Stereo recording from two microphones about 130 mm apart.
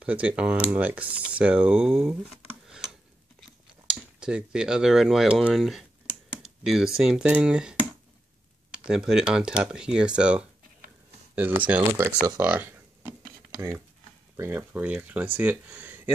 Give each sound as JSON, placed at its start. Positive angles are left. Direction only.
{"t": 0.0, "sound": "speech", "side_deg": -10}
{"t": 8.7, "sound": "speech", "side_deg": -5}
{"t": 12.4, "sound": "a sound", "side_deg": -15}
{"t": 14.3, "sound": "speech", "side_deg": -20}